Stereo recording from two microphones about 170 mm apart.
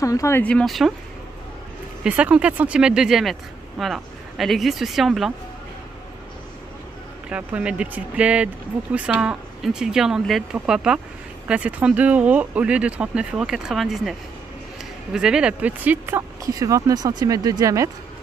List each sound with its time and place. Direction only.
0.0 s speech: 20° left (ahead or behind); by 0.9 s centre (ahead or behind)
2.0 s speech: 5° right (ahead or behind)
7.2 s speech: 5° right (ahead or behind)
15.1 s speech: 5° right (ahead or behind); by 17.8 s 20° right (ahead or behind)